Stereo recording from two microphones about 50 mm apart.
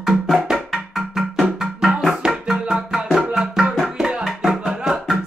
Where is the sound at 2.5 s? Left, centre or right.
Right.